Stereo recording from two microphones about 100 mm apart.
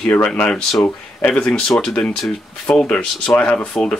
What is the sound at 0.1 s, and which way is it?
Speech, 15° left (ahead or behind).